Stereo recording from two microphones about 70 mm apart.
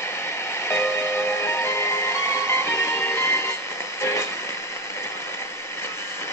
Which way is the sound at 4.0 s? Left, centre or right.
Left.